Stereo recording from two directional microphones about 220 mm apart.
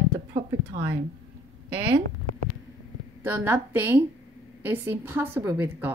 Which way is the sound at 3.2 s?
10° right (ahead or behind).